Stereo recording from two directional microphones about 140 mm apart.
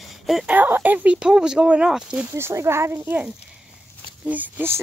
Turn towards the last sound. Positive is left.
turn(degrees=-15)  # may be behind; listen again after turning